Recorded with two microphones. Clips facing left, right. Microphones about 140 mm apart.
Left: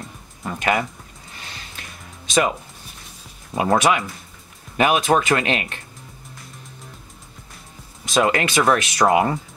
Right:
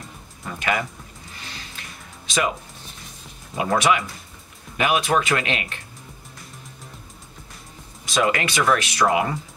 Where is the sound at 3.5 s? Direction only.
35° left (ahead or behind).